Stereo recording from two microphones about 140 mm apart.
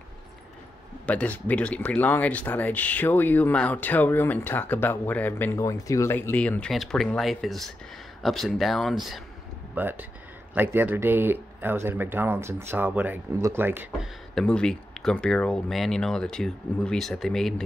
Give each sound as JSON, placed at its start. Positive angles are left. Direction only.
{"t": 1.0, "sound": "speech", "side_deg": 10}
{"t": 9.8, "sound": "speech", "side_deg": -15}
{"t": 14.3, "sound": "speech", "side_deg": 5}